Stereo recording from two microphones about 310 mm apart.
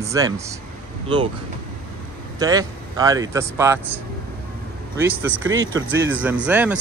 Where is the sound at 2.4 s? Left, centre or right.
Centre.